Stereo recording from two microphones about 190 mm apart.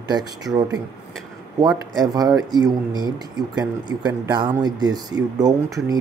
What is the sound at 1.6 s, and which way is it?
Speech, 20° right (ahead or behind).